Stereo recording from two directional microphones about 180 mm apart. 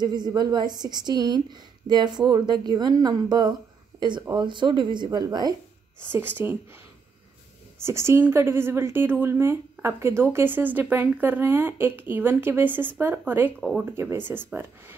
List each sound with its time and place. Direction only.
0.0 s a woman's voice: 25° right (ahead or behind)
6.1 s speech: 10° right (ahead or behind)
7.8 s speech: 15° right (ahead or behind)
13.6 s speech: centre (ahead or behind)
13.9 s speech: 10° right (ahead or behind)